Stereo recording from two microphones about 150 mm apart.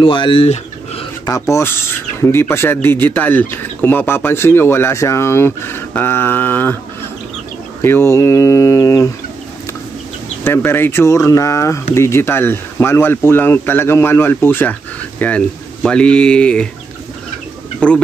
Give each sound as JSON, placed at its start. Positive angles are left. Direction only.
{"t": 0.0, "sound": "speech", "side_deg": 35}
{"t": 1.5, "sound": "speech", "side_deg": 15}
{"t": 7.8, "sound": "speech", "side_deg": 15}
{"t": 10.4, "sound": "speech", "side_deg": 15}
{"t": 17.7, "sound": "speech", "side_deg": 5}